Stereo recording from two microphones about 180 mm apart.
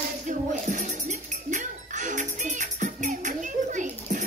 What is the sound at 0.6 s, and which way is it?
Music, 40° right (ahead or behind).